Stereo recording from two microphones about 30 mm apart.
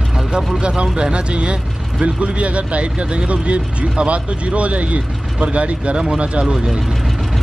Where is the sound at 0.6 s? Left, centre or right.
Right.